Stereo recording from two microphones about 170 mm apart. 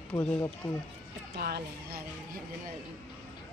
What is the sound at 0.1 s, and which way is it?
Speech, 15° left (ahead or behind).